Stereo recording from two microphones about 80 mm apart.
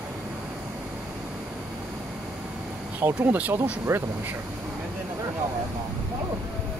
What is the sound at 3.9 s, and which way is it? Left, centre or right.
Speech, right.